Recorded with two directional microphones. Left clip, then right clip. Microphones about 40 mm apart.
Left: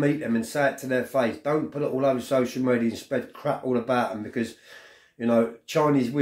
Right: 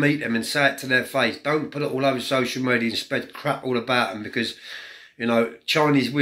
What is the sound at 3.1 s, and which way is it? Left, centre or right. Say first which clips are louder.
Speech: right 2 dB; left.